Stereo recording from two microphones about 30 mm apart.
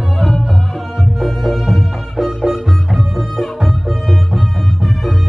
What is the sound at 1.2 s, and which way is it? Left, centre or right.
Music, centre.